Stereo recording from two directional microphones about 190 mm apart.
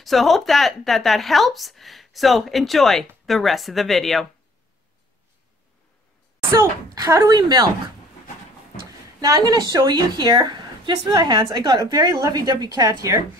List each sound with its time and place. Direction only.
0.0 s speech: centre (ahead or behind)
6.5 s a woman's voice: 20° right (ahead or behind)
9.2 s a woman's voice: 20° right (ahead or behind)